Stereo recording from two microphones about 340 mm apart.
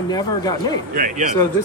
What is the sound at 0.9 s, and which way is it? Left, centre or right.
Speech, right.